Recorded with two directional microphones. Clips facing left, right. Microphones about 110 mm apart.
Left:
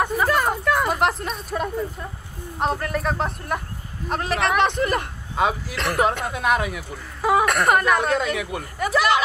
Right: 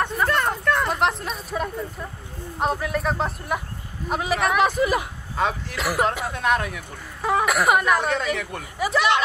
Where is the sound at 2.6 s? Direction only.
Centre (ahead or behind).